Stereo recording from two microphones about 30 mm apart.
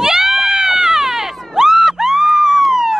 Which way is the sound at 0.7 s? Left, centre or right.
Centre.